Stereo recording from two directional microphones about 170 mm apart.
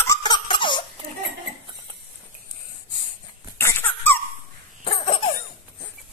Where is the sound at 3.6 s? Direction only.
15° left (ahead or behind).